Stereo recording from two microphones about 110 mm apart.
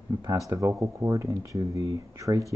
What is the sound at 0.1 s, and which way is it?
Speech, 25° right (ahead or behind).